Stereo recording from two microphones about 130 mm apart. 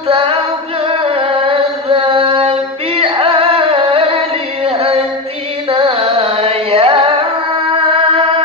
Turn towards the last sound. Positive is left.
turn(degrees=-45)  # may be behind; listen again after turning